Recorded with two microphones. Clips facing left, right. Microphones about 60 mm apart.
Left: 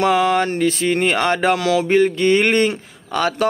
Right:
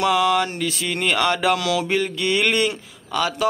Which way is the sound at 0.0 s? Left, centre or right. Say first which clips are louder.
Left 3 dB; left.